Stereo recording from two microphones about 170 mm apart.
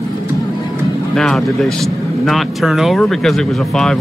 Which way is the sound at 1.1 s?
Centre (ahead or behind).